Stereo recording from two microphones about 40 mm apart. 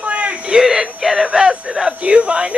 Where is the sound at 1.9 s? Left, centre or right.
Right.